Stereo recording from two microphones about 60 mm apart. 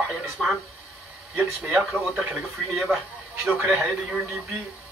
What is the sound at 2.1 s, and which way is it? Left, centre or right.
Speech, right.